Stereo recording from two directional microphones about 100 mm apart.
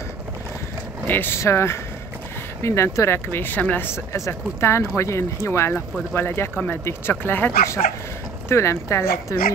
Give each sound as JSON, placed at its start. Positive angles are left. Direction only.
{"t": 1.0, "sound": "speech", "side_deg": 20}